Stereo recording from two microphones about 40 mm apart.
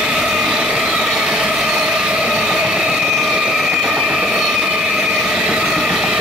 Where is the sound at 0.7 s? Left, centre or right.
Centre.